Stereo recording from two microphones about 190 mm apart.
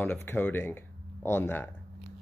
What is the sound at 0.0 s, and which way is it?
Speech, 10° left (ahead or behind).